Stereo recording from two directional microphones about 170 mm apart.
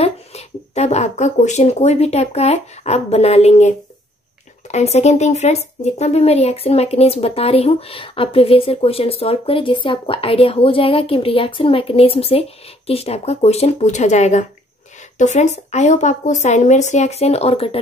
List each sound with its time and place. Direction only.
0.0 s a woman's voice: 40° left (ahead or behind)